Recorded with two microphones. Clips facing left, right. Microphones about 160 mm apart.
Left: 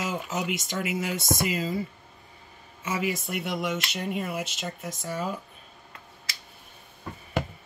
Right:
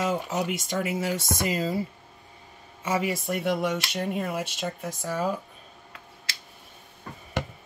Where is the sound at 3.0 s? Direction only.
45° right (ahead or behind).